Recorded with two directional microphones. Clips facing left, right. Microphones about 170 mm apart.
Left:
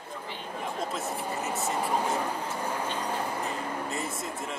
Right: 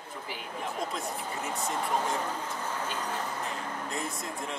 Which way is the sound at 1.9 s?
10° left (ahead or behind).